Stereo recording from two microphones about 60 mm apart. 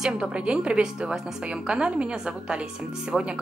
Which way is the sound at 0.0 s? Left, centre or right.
Centre.